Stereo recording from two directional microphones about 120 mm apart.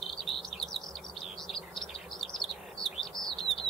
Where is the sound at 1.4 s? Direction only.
5° left (ahead or behind).